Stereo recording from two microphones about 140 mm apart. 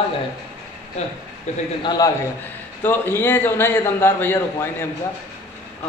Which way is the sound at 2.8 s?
15° left (ahead or behind).